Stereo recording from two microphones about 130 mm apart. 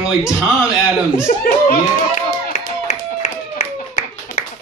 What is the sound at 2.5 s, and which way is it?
Clapping, 65° left (ahead or behind).